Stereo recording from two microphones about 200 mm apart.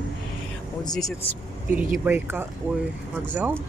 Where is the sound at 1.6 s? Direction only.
10° right (ahead or behind).